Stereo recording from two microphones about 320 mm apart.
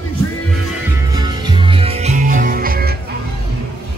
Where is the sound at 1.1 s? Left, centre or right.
Centre.